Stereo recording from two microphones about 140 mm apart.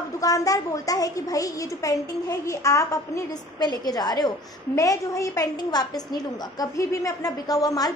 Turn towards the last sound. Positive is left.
turn(degrees=25)  # may be behind; listen again after turning